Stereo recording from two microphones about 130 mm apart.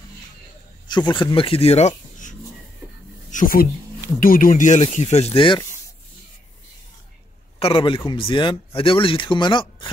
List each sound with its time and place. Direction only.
0.8 s speech: 35° left (ahead or behind); by 2.3 s 70° left (ahead or behind)
3.3 s a sound: 85° left
4.2 s speech: 90° left; by 5.6 s 45° left (ahead or behind)
7.5 s a man's voice: 45° left (ahead or behind)